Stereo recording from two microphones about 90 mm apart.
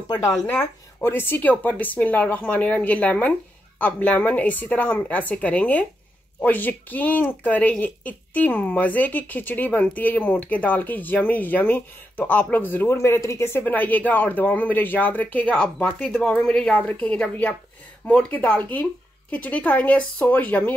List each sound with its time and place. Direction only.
0.1 s speech: 45° left (ahead or behind)
0.5 s a woman's voice: 20° left (ahead or behind)
12.9 s a woman's voice: 35° left (ahead or behind); by 20.7 s 15° left (ahead or behind)